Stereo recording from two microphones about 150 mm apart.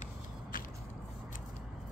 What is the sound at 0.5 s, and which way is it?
Vehicle, 70° left (ahead or behind).